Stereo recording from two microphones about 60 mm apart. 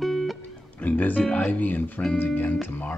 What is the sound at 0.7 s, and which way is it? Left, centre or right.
Speech, left.